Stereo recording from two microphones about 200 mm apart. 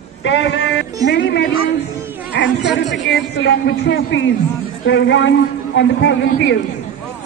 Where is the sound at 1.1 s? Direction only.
55° left (ahead or behind).